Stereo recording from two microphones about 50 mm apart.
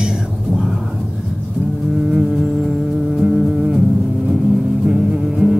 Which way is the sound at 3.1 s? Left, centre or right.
Centre.